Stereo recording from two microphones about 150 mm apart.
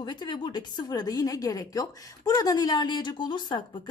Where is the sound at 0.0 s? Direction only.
30° left (ahead or behind).